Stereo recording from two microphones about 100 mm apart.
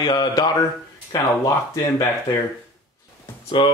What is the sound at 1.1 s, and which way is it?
Speech, 40° left (ahead or behind).